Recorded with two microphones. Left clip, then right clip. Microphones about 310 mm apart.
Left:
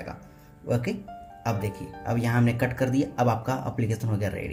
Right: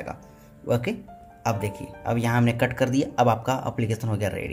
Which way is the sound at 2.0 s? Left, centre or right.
Centre.